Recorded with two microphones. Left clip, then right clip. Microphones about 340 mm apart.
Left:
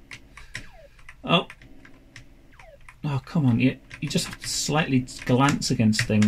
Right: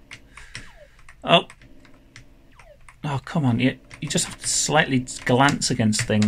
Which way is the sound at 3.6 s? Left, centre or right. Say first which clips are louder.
Right 1 dB; right.